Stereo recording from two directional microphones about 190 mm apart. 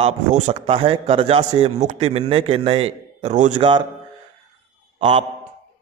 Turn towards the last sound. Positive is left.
turn(degrees=-30)  # may be behind; listen again after turning